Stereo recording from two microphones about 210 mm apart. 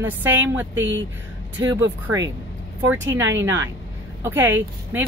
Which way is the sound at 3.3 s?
10° right (ahead or behind).